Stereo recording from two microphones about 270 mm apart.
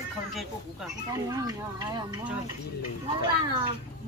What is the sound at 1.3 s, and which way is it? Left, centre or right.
Speech, centre.